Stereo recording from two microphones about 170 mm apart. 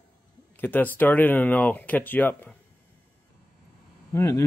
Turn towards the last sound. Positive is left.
turn(degrees=15)  # may be behind; listen again after turning